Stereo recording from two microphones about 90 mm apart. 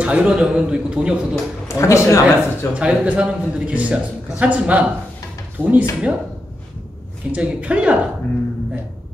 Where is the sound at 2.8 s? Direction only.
10° right (ahead or behind).